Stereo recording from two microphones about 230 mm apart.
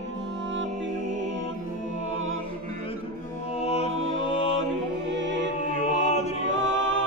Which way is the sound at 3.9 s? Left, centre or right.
Right.